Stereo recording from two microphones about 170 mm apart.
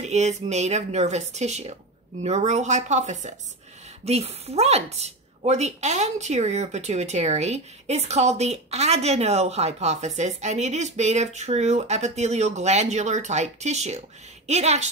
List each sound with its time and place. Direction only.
0.0 s a woman's voice: 40° right (ahead or behind)